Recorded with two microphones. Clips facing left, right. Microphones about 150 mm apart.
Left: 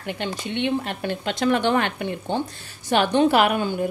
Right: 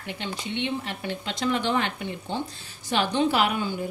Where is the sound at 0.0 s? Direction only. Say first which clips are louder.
Left 5 dB; 55° left (ahead or behind).